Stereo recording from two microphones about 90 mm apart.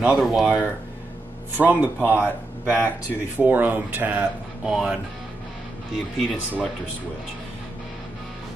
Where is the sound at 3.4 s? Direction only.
15° right (ahead or behind).